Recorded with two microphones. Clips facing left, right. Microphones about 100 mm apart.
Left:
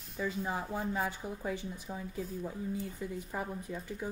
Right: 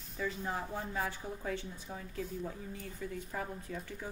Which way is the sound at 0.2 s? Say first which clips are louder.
Left 2 dB; 15° left (ahead or behind).